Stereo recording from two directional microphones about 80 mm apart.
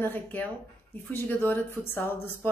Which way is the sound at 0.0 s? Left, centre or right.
Left.